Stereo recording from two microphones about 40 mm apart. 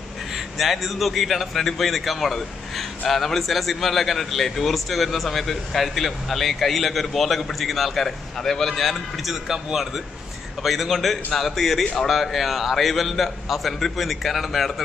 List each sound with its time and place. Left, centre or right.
0.3 s a man's voice: centre